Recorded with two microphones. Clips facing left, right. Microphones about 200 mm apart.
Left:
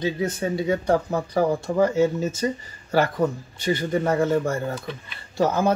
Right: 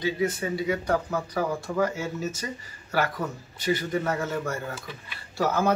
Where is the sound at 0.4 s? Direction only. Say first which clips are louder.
Left 4 dB; 30° left (ahead or behind).